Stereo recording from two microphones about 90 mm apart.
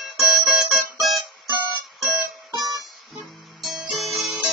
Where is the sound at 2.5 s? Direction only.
45° right (ahead or behind).